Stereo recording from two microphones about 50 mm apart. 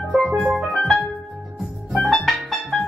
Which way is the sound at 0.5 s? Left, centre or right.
Right.